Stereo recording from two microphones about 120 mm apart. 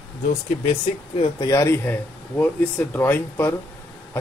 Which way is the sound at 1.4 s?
25° left (ahead or behind).